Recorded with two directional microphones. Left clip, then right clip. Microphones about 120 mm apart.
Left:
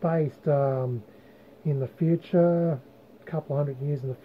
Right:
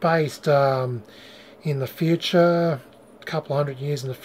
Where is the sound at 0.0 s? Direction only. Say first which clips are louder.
Right 6 dB; 15° right (ahead or behind).